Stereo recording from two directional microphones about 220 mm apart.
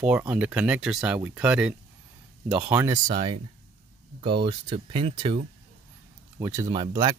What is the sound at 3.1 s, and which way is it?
Speech, 25° right (ahead or behind).